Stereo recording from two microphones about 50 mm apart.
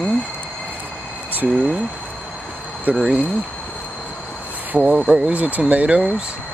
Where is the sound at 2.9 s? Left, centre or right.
Right.